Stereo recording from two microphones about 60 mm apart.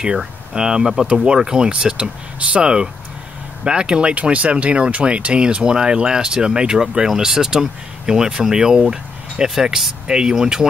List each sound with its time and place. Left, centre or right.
0.0 s speech: centre